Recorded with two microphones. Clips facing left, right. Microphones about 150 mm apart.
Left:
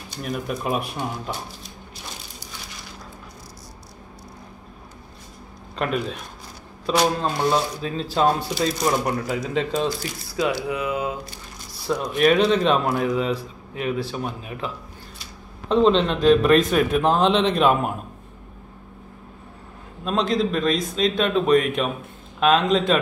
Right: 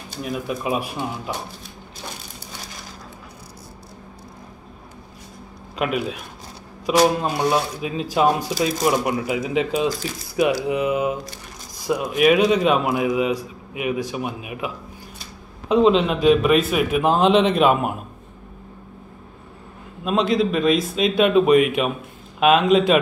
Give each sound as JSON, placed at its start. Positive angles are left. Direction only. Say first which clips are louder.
{"t": 0.2, "sound": "speech", "louder": "right 1 dB", "side_deg": 0}
{"t": 5.8, "sound": "a man's voice", "louder": "right 2 dB", "side_deg": -10}
{"t": 10.7, "sound": "mantra", "louder": "right 4 dB", "side_deg": -20}
{"t": 11.8, "sound": "a man's voice", "louder": "right 2 dB", "side_deg": -10}
{"t": 15.7, "sound": "speech", "louder": "right 2 dB", "side_deg": -5}
{"t": 20.1, "sound": "a man's voice", "louder": "right 2 dB", "side_deg": -5}